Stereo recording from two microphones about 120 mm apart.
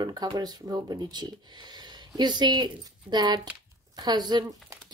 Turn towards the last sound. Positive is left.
turn(degrees=-35)  # may be behind; listen again after turning